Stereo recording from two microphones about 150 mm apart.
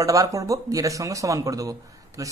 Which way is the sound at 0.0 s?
20° right (ahead or behind).